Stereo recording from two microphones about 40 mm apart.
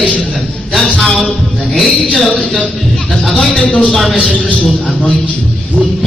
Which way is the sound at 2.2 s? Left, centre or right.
Centre.